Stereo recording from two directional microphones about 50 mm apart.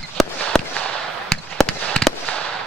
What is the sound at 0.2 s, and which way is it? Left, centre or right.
Fireworks, centre.